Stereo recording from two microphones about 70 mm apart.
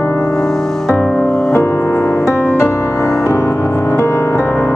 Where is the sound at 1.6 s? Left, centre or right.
Left.